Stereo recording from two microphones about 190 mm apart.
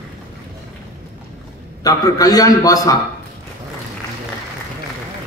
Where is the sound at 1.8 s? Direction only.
20° left (ahead or behind).